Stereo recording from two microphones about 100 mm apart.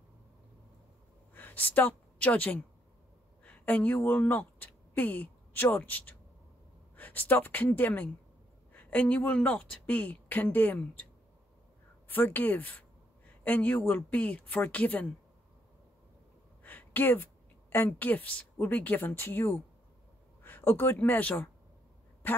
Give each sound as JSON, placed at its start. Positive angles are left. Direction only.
{"t": 1.3, "sound": "a woman's voice", "side_deg": 20}
{"t": 12.1, "sound": "speech", "side_deg": 20}
{"t": 16.6, "sound": "a woman's voice", "side_deg": 20}